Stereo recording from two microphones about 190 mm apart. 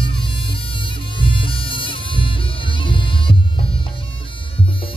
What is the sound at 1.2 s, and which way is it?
Music, 25° left (ahead or behind).